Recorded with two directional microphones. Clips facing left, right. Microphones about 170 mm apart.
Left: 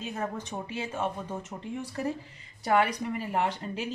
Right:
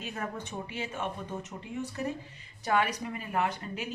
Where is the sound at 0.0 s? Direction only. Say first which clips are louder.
Left 3 dB; 30° left (ahead or behind).